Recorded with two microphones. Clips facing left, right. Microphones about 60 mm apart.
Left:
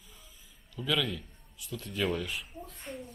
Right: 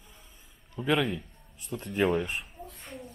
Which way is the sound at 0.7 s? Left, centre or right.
Right.